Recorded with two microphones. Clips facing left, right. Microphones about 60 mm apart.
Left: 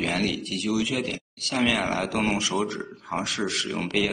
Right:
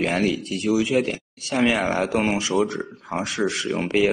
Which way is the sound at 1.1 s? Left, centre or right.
Right.